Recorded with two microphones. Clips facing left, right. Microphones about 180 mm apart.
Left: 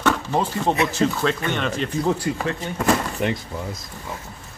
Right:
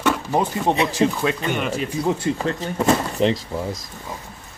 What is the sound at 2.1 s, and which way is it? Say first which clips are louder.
Speech: right 2 dB; 25° right (ahead or behind).